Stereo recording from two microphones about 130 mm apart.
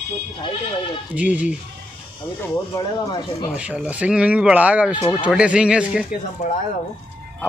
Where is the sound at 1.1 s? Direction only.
10° right (ahead or behind).